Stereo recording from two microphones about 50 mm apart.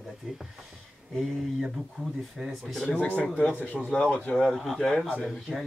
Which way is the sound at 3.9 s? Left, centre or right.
Left.